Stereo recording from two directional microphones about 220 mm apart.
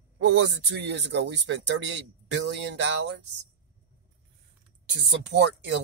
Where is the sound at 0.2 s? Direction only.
55° right (ahead or behind).